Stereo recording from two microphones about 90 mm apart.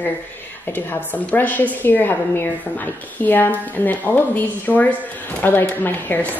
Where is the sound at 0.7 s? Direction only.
20° left (ahead or behind).